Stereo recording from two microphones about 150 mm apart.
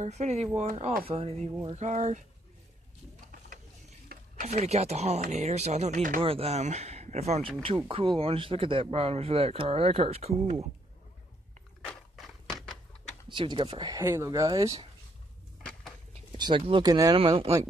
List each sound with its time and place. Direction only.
0.0 s speech: 50° right (ahead or behind)
4.1 s a sound: 90° right
4.5 s speech: 45° right (ahead or behind); by 6.2 s 60° right (ahead or behind)
6.2 s speech: 40° right (ahead or behind)
11.8 s a sound: 5° left (ahead or behind)
13.3 s speech: 30° right (ahead or behind)
16.3 s speech: 30° right (ahead or behind)